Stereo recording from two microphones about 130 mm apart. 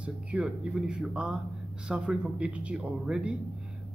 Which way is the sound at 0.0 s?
10° right (ahead or behind).